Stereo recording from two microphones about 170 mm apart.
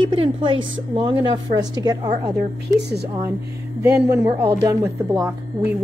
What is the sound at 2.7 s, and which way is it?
Speech, 80° right.